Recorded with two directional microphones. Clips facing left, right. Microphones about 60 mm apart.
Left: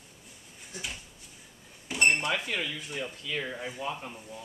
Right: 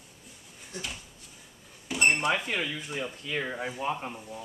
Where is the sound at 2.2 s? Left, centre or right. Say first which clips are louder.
Right 3 dB; right.